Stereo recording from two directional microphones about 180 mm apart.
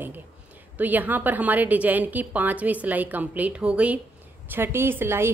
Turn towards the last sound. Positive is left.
turn(degrees=-15)  # may be behind; listen again after turning